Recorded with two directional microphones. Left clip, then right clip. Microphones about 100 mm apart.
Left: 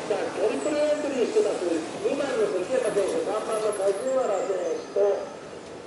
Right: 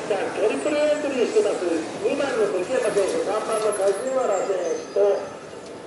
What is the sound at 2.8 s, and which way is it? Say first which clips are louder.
Speech: right 3 dB; 15° right (ahead or behind).